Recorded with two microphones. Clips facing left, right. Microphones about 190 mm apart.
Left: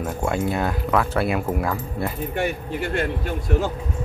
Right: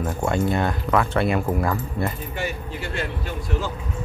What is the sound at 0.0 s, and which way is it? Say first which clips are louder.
Speech: right 1 dB; 5° left (ahead or behind).